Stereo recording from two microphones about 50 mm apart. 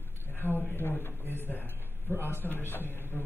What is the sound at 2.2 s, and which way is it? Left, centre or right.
Speech, left.